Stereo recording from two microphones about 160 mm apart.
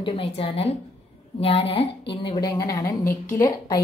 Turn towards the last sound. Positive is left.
turn(degrees=20)  # may be behind; listen again after turning